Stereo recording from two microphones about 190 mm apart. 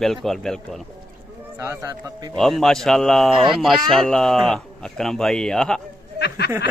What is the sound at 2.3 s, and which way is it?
Speech, centre (ahead or behind).